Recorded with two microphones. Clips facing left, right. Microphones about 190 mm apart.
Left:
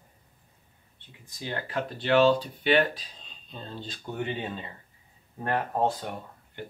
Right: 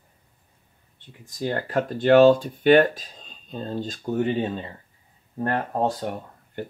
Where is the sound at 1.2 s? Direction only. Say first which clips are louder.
Right 8 dB; 45° right (ahead or behind).